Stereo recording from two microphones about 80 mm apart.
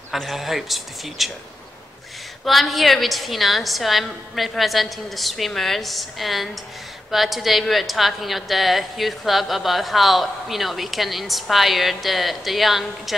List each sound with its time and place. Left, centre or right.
0.1 s a woman's voice: centre
2.4 s a woman's voice: centre